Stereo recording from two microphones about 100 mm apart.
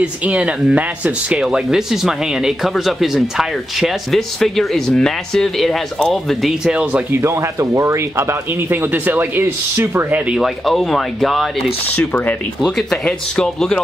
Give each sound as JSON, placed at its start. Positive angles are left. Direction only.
{"t": 0.0, "sound": "speech", "side_deg": -10}
{"t": 7.1, "sound": "speech", "side_deg": -25}
{"t": 10.3, "sound": "speech", "side_deg": 0}
{"t": 11.9, "sound": "speech", "side_deg": 15}